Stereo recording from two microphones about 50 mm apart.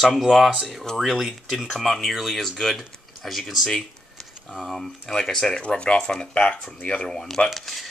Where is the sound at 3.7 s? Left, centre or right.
Centre.